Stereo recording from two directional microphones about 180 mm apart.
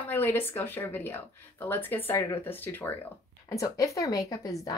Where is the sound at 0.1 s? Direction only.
10° left (ahead or behind).